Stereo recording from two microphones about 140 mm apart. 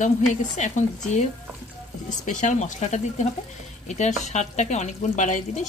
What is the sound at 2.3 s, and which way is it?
Speech, 65° left (ahead or behind).